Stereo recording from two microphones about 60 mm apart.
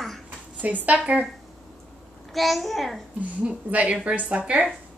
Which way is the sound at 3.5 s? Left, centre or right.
Right.